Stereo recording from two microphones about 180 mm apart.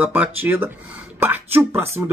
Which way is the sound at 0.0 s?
10° right (ahead or behind).